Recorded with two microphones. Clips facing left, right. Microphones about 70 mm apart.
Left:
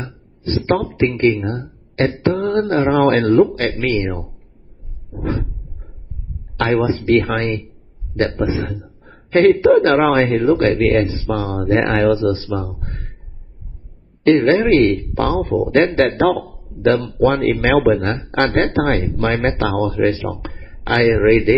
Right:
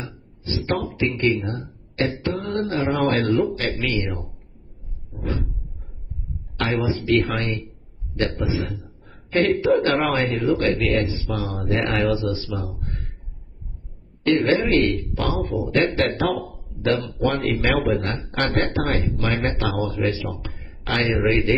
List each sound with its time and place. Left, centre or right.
0.0 s a man's voice: left
6.6 s a man's voice: left
11.6 s speech: left
14.2 s speech: left